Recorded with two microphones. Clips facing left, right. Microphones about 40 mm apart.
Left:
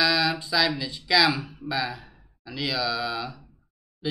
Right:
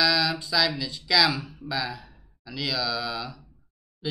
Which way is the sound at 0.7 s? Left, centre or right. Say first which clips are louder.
Left 1 dB; centre.